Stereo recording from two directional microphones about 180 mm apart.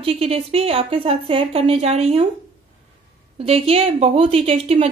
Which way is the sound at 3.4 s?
35° right (ahead or behind).